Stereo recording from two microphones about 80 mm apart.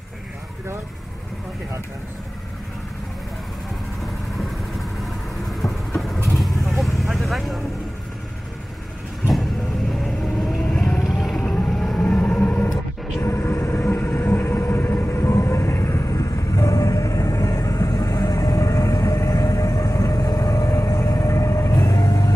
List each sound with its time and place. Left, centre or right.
5.5 s vehicle: centre
10.0 s vehicle: centre
11.4 s vehicle: centre
12.4 s a sound: centre
13.2 s vehicle: left